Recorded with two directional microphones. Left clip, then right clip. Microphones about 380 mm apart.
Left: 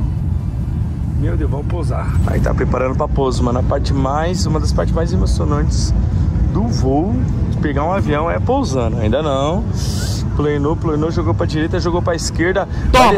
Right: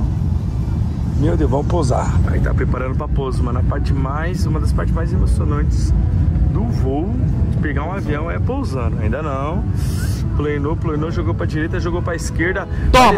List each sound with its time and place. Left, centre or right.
1.2 s speech: right
3.5 s speech: left
8.5 s speech: left
12.9 s speech: centre